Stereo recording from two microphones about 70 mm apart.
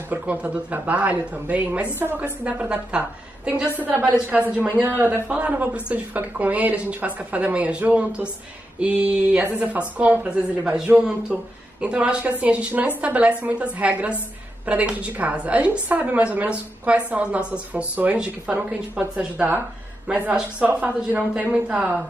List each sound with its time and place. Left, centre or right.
0.1 s a woman's voice: right
5.3 s a woman's voice: centre